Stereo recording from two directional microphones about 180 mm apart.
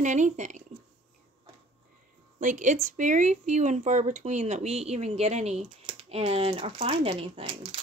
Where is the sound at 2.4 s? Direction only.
45° right (ahead or behind).